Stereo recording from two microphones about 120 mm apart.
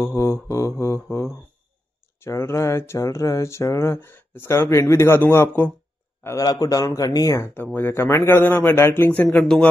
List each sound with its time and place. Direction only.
0.0 s speech: 20° left (ahead or behind)
6.2 s speech: 30° left (ahead or behind); by 9.7 s 10° left (ahead or behind)